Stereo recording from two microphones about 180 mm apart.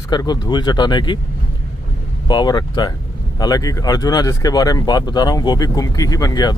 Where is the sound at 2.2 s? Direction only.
25° left (ahead or behind).